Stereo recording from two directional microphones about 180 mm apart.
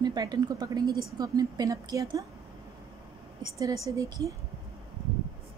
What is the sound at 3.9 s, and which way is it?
Speech, 20° right (ahead or behind).